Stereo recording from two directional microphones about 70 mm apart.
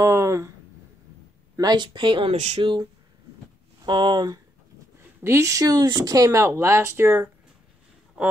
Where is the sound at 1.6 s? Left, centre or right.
Right.